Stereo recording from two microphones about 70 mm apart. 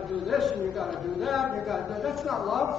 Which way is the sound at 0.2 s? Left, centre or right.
Centre.